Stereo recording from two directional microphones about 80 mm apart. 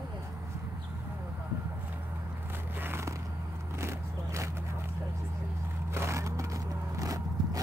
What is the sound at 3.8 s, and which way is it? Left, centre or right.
Vehicle, right.